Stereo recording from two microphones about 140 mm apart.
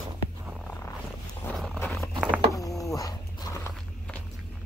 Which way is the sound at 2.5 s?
25° left (ahead or behind).